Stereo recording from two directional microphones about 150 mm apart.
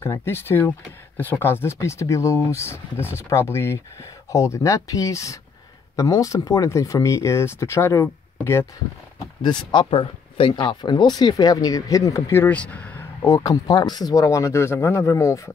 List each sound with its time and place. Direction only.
0.0 s speech: 15° left (ahead or behind)
9.4 s speech: 30° left (ahead or behind); by 12.9 s 10° left (ahead or behind)
13.2 s speech: 25° left (ahead or behind)